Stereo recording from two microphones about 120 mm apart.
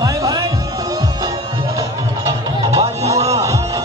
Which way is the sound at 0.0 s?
30° right (ahead or behind).